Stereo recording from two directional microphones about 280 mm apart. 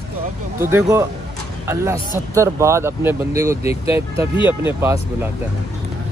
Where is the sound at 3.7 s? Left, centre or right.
Left.